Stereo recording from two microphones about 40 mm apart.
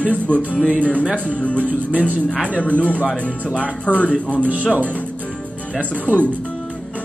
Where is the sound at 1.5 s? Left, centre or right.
Right.